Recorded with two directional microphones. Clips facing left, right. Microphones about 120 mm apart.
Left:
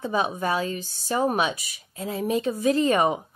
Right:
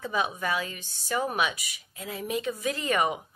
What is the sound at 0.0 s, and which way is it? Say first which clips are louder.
Speech: left 4 dB; 30° left (ahead or behind).